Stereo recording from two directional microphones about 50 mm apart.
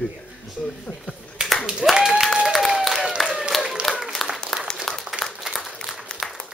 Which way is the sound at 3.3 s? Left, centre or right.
Centre.